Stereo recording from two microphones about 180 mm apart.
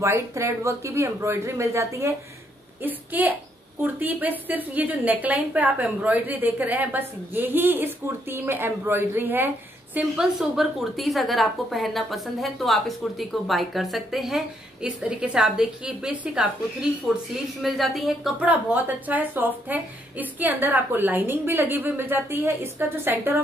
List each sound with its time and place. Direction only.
0.0 s a woman's voice: 15° right (ahead or behind)